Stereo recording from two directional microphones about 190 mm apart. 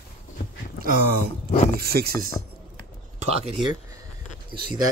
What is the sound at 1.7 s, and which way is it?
Speech, 55° right (ahead or behind).